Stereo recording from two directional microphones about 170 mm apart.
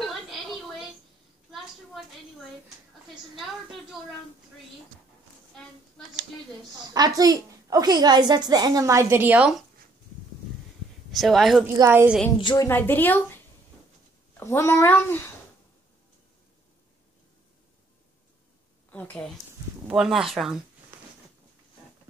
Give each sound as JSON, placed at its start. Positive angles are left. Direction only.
{"t": 0.0, "sound": "television", "side_deg": 0}
{"t": 3.3, "sound": "a woman's voice", "side_deg": 0}
{"t": 6.9, "sound": "a woman's voice", "side_deg": -20}
{"t": 11.1, "sound": "speech", "side_deg": 0}
{"t": 11.6, "sound": "a woman's voice", "side_deg": -15}
{"t": 12.4, "sound": "a woman's voice", "side_deg": 30}
{"t": 12.6, "sound": "speech", "side_deg": 10}
{"t": 14.3, "sound": "speech", "side_deg": 15}
{"t": 18.9, "sound": "a woman's voice", "side_deg": 10}